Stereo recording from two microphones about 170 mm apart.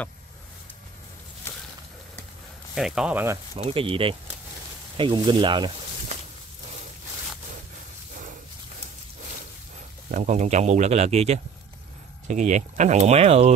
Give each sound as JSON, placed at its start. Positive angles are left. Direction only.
{"t": 2.7, "sound": "speech", "side_deg": -5}
{"t": 3.5, "sound": "speech", "side_deg": -35}
{"t": 10.1, "sound": "speech", "side_deg": -45}